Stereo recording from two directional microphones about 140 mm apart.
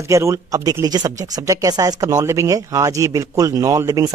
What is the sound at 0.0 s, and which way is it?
Speech, 20° right (ahead or behind).